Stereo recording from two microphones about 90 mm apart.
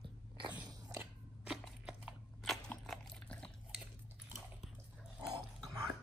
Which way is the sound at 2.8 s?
10° left (ahead or behind).